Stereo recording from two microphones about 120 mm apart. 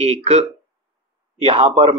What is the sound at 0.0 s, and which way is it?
Speech, 65° right (ahead or behind).